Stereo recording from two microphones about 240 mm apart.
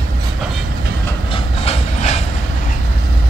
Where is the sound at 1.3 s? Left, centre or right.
Left.